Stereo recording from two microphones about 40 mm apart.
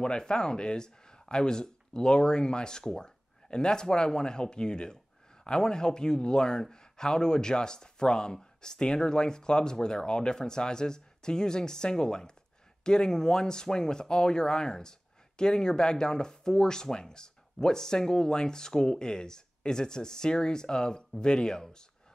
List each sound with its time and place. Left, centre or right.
0.0 s a man's voice: left